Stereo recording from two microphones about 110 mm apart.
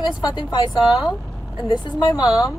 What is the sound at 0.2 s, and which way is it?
Speech, 40° left (ahead or behind).